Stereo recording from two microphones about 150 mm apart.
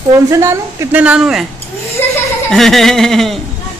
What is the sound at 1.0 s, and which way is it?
Speech, 5° right (ahead or behind).